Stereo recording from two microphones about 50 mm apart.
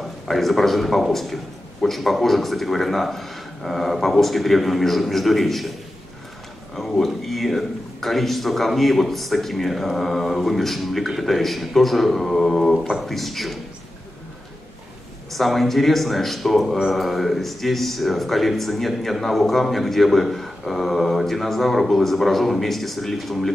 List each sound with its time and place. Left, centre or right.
0.3 s speech: centre
6.7 s speech: centre
15.3 s speech: centre